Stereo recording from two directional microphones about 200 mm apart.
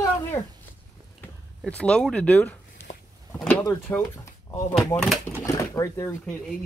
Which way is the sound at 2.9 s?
50° left (ahead or behind).